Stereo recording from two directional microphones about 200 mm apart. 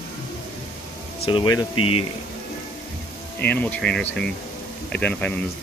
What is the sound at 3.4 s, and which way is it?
Speech, 10° left (ahead or behind).